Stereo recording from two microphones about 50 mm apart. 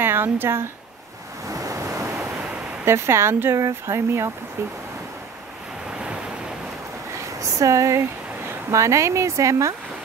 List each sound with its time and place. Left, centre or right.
0.0 s speech: right
1.6 s waves: right
2.8 s speech: right
3.5 s speech: right
7.3 s speech: right